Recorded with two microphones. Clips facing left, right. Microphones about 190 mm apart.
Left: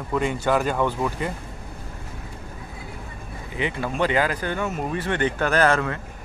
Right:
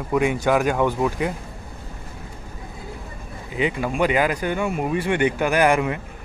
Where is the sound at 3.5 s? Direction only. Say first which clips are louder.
Right 4 dB; 15° right (ahead or behind).